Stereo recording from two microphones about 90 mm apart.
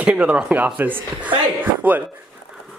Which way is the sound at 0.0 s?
15° right (ahead or behind).